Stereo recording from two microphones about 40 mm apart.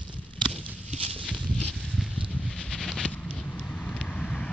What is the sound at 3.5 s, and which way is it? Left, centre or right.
Vehicle, left.